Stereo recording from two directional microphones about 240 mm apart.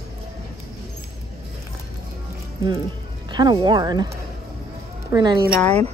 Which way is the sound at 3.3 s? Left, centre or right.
Centre.